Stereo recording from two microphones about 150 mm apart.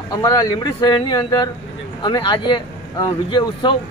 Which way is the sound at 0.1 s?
25° left (ahead or behind).